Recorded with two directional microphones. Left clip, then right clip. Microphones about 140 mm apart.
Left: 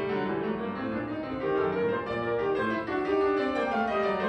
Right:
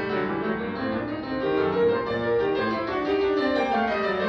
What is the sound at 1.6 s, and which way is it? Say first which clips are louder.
Music: right 6 dB; 10° left (ahead or behind).